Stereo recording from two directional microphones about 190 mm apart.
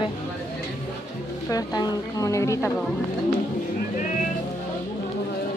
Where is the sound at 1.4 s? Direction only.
20° left (ahead or behind).